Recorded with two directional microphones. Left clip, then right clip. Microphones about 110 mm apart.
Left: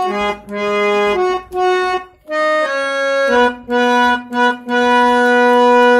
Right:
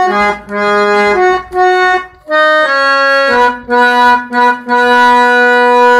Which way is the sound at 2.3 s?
15° left (ahead or behind).